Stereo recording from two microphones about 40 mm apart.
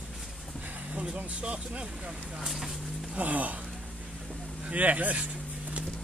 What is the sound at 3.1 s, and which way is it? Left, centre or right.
Speech, right.